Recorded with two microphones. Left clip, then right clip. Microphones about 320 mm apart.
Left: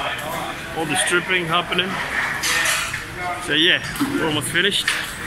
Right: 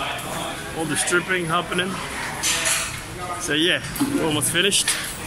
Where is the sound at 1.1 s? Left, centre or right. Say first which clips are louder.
Even; centre.